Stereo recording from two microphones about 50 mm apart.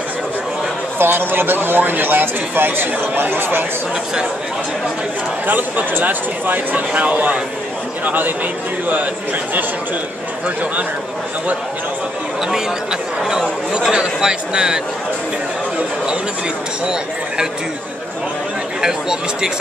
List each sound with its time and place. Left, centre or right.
0.9 s a man's voice: right
5.5 s speech: right
13.2 s speech: centre
18.8 s speech: centre